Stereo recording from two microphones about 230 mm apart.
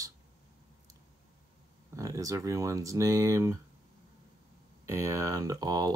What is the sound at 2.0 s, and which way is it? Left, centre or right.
Speech, centre.